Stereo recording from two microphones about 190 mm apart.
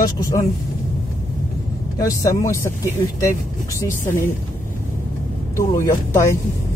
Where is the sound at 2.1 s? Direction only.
15° left (ahead or behind).